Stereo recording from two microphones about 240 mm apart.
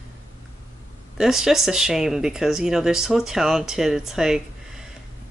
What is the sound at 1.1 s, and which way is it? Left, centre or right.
Speech, centre.